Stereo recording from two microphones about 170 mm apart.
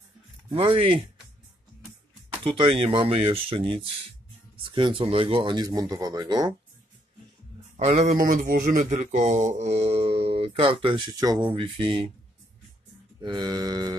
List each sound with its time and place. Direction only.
0.5 s speech: 30° right (ahead or behind)
2.4 s speech: 30° right (ahead or behind)
7.7 s speech: 45° right (ahead or behind)
13.2 s speech: 25° right (ahead or behind)